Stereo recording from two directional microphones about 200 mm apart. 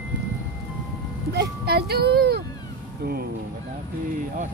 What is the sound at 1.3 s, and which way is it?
Speech, 50° right (ahead or behind).